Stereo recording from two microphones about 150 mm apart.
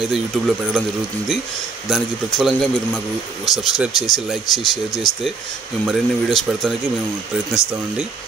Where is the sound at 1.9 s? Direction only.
Centre (ahead or behind).